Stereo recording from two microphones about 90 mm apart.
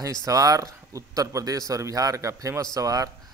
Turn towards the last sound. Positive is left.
turn(degrees=-40)  # may be behind; listen again after turning